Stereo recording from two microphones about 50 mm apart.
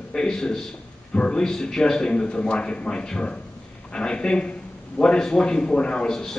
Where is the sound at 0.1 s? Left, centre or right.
Centre.